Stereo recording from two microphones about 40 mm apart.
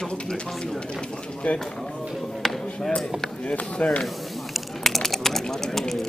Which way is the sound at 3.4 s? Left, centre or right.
Left.